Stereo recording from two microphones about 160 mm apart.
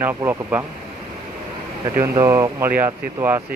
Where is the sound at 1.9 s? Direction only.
20° right (ahead or behind).